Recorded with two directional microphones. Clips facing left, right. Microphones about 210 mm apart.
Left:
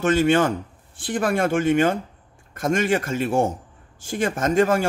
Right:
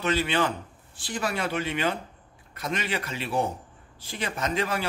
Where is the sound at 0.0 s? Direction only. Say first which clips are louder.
Left 8 dB; 50° left (ahead or behind).